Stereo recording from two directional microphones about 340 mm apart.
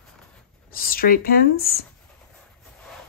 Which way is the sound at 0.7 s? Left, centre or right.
Left.